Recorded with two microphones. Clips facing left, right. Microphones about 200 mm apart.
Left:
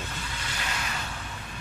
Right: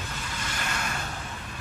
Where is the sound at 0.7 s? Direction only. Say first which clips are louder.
Right 2 dB; 50° right (ahead or behind).